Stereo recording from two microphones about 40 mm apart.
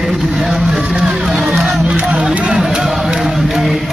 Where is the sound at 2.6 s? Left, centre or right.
Centre.